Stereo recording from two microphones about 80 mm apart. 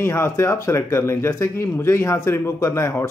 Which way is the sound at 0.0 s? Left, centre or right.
Left.